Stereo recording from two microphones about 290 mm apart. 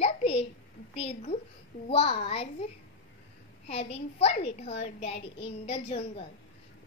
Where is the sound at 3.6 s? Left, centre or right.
Centre.